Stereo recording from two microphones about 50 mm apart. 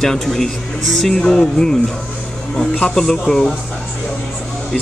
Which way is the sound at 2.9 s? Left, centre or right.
Centre.